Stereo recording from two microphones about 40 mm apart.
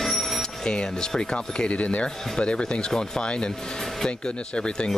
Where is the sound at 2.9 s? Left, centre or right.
Centre.